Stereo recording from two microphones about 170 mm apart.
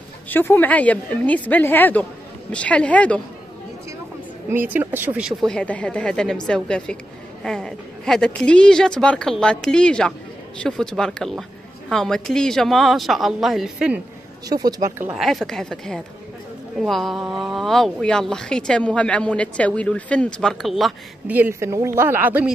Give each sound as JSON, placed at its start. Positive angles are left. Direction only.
{"t": 0.3, "sound": "a woman's voice", "side_deg": 10}
{"t": 4.5, "sound": "a woman's voice", "side_deg": -10}
{"t": 14.5, "sound": "speech", "side_deg": -20}
{"t": 15.1, "sound": "a woman's voice", "side_deg": 0}
{"t": 21.3, "sound": "speech", "side_deg": -10}